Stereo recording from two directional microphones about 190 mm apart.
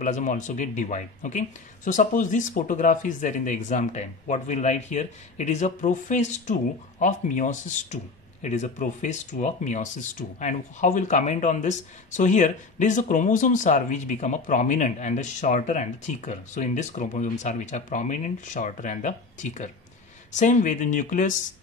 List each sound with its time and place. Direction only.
0.0 s speech: 40° left (ahead or behind)